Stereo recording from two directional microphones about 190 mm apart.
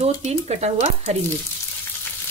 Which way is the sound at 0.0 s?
35° right (ahead or behind).